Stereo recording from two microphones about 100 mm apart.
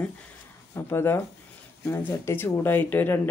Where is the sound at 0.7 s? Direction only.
25° left (ahead or behind).